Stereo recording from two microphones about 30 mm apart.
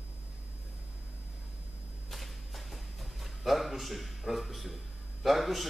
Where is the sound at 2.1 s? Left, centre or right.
Centre.